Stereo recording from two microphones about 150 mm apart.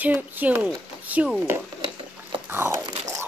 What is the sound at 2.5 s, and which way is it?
Biting, 15° right (ahead or behind).